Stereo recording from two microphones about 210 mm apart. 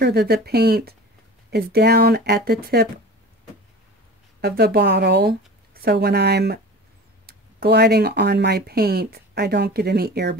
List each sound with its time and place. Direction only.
0.0 s speech: 50° right (ahead or behind)
4.4 s speech: 50° right (ahead or behind)